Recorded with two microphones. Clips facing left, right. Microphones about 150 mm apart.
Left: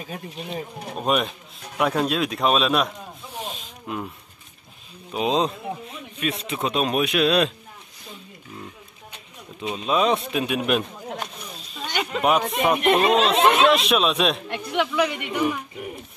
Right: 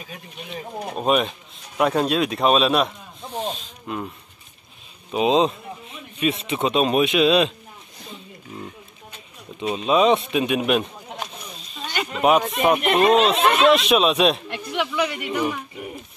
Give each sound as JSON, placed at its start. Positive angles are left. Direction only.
{"t": 0.1, "sound": "speech", "side_deg": 40}
{"t": 0.9, "sound": "speech", "side_deg": 0}
{"t": 3.5, "sound": "a sound", "side_deg": 10}
{"t": 5.1, "sound": "speech", "side_deg": 0}
{"t": 9.6, "sound": "speech", "side_deg": 0}